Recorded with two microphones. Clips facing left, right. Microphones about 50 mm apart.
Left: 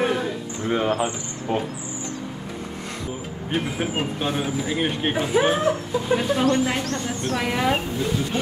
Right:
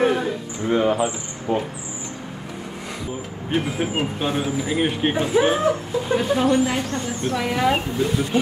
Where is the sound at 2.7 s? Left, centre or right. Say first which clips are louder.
Right 3 dB; centre.